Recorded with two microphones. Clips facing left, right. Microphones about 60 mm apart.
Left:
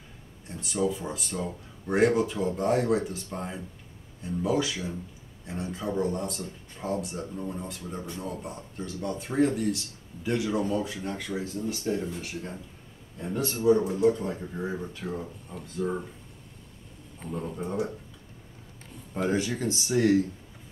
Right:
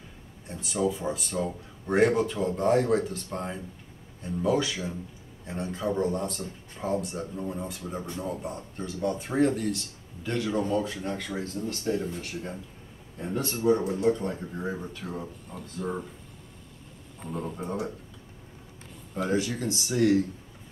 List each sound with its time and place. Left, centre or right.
0.5 s speech: centre
17.3 s speech: centre
19.1 s speech: left